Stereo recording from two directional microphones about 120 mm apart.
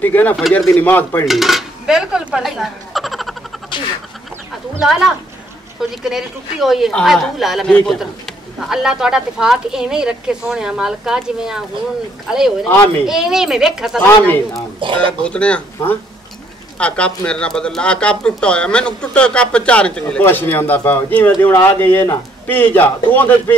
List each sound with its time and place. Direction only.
0.0 s speech: 15° left (ahead or behind)
1.2 s dishes: centre (ahead or behind)
3.7 s duck: 40° left (ahead or behind)
5.8 s a woman's voice: 5° right (ahead or behind)
14.0 s speech: 15° left (ahead or behind)
14.8 s speech: 45° right (ahead or behind)
15.2 s speech: 10° left (ahead or behind)